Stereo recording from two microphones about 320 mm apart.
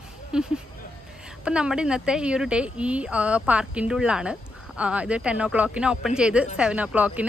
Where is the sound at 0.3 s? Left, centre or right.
Centre.